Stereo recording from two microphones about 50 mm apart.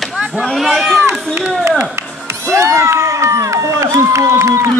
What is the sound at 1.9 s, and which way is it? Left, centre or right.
Music, right.